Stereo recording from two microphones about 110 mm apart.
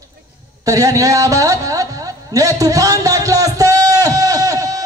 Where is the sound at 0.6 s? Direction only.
30° right (ahead or behind).